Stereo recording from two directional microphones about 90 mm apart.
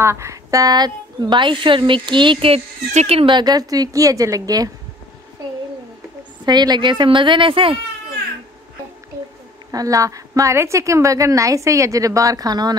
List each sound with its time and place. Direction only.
0.0 s a woman's voice: 30° right (ahead or behind); by 2.6 s 75° right (ahead or behind)
3.1 s speech: 90° right
3.3 s speech: 45° right (ahead or behind)
6.4 s a woman's voice: 50° right (ahead or behind); by 7.8 s 80° right
9.7 s a woman's voice: 40° right (ahead or behind)